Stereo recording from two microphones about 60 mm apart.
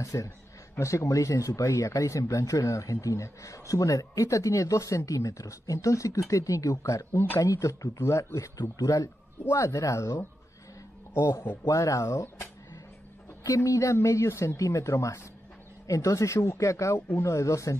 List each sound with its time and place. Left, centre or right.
0.0 s speech: left
7.1 s speech: left
7.3 s speech: left
9.4 s speech: left
11.1 s speech: left
11.7 s speech: left
13.6 s speech: left